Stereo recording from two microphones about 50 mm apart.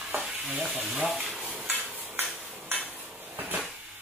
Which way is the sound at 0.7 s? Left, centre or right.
Centre.